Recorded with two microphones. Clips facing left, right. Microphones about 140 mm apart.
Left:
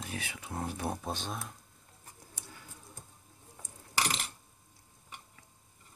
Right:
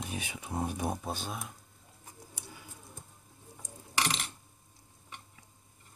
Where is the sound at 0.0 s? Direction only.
20° right (ahead or behind).